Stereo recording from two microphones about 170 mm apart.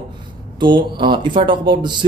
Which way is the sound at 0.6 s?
30° right (ahead or behind).